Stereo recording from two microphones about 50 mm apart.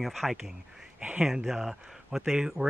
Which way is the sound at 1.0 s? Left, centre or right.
Right.